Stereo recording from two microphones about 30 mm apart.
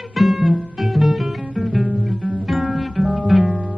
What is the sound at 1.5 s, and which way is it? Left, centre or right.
Guitar, centre.